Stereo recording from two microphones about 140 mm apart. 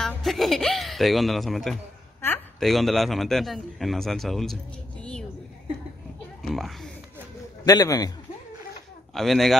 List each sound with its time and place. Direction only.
0.0 s a man's voice: centre (ahead or behind)
6.4 s a child's voice: centre (ahead or behind)
7.6 s a man's voice: 25° left (ahead or behind)
9.1 s a man's voice: centre (ahead or behind)